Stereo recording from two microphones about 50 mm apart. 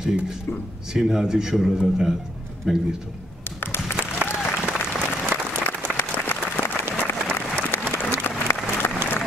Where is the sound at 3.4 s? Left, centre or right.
Left.